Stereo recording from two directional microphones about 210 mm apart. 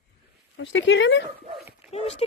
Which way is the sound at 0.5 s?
60° left (ahead or behind).